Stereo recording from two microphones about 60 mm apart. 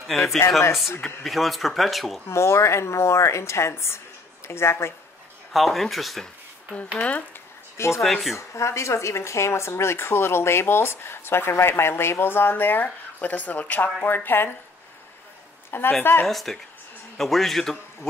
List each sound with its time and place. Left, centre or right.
0.0 s speech: centre
0.6 s speech: left
1.0 s speech: centre
2.2 s speech: left
5.5 s speech: centre
7.0 s speech: left
7.7 s speech: left
8.0 s speech: centre
8.4 s speech: left
16.0 s speech: left
16.3 s speech: centre